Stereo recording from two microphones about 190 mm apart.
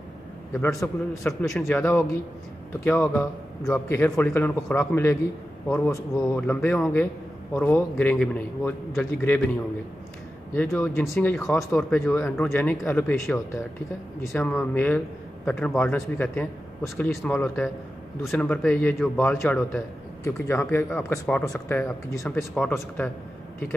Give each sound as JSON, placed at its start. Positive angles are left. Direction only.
{"t": 0.5, "sound": "speech", "side_deg": 15}
{"t": 1.4, "sound": "speech", "side_deg": 0}
{"t": 1.8, "sound": "speech", "side_deg": 10}
{"t": 6.3, "sound": "speech", "side_deg": 5}
{"t": 10.5, "sound": "speech", "side_deg": 10}
{"t": 14.4, "sound": "speech", "side_deg": 10}